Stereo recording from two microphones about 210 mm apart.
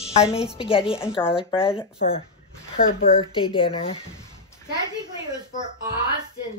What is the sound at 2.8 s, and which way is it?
Speech, 40° left (ahead or behind).